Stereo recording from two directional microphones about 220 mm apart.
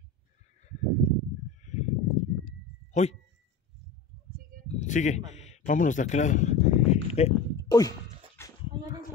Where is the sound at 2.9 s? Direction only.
30° left (ahead or behind).